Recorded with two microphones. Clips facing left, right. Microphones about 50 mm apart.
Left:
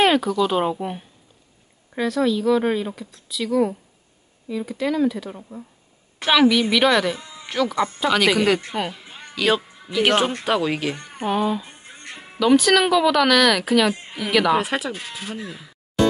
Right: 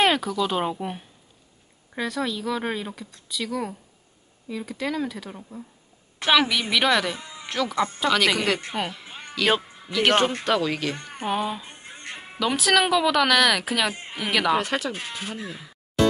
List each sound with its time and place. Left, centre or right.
0.0 s speech: centre
7.2 s music: centre
7.4 s speech: centre
11.2 s speech: centre
15.0 s speech: centre
15.2 s speech: centre